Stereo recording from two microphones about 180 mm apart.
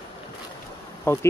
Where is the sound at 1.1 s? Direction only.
15° left (ahead or behind).